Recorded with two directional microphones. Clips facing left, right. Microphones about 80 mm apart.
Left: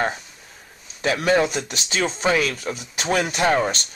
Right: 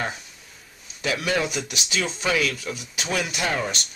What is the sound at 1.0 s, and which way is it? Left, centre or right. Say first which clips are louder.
Speech: left 6 dB; left.